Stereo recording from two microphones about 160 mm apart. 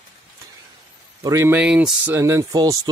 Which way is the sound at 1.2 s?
20° right (ahead or behind).